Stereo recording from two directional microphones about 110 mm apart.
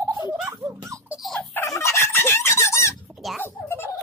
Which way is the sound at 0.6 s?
30° right (ahead or behind).